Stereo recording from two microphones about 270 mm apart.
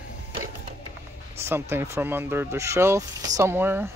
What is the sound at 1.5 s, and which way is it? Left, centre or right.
Speech, centre.